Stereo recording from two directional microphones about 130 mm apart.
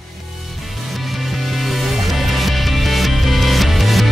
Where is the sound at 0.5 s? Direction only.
Centre (ahead or behind).